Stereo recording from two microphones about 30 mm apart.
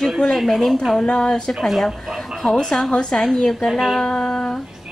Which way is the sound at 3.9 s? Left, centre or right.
Centre.